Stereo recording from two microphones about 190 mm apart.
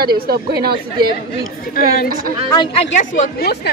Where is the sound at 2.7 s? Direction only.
40° left (ahead or behind).